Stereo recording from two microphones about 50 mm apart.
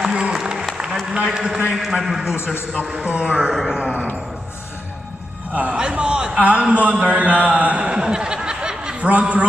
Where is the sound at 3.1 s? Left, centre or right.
Right.